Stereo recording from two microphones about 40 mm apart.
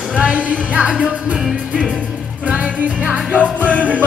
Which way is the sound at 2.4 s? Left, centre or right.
Right.